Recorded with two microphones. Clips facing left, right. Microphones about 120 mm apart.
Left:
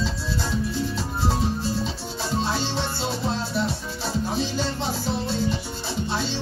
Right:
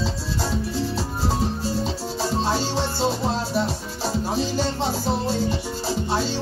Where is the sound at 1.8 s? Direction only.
40° right (ahead or behind).